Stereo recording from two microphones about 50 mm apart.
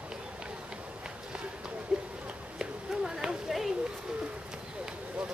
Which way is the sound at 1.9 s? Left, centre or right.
Centre.